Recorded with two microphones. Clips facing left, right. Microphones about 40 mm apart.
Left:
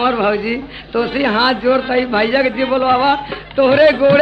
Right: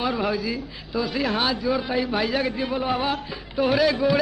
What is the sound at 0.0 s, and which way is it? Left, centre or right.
A man's voice, left.